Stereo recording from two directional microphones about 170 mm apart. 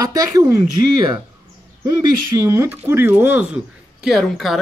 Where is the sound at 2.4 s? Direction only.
15° right (ahead or behind).